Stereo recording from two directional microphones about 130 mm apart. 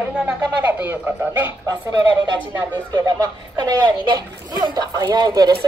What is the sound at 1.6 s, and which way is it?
A man's voice, 30° right (ahead or behind).